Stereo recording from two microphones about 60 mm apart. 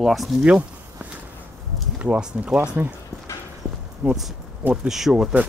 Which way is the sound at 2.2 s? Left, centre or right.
Centre.